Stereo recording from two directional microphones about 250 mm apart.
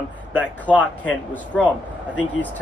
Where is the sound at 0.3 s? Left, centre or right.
Centre.